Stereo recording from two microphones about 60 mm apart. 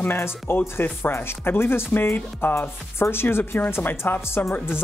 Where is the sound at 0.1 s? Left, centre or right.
Left.